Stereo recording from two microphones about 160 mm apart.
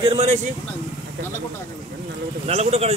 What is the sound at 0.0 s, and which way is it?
Speech, 40° right (ahead or behind).